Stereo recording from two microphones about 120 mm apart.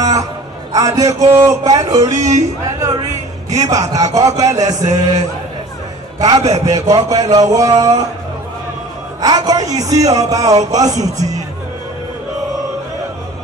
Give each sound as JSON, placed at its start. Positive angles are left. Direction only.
{"t": 0.0, "sound": "a sound", "side_deg": -30}
{"t": 1.7, "sound": "a man's voice", "side_deg": -30}
{"t": 2.6, "sound": "a sound", "side_deg": -30}
{"t": 6.1, "sound": "a man's voice", "side_deg": -35}
{"t": 9.2, "sound": "a man's voice", "side_deg": -30}
{"t": 11.0, "sound": "a man's voice", "side_deg": -75}